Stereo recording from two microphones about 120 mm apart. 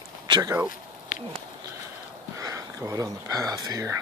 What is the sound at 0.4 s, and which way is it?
Speech, 25° right (ahead or behind).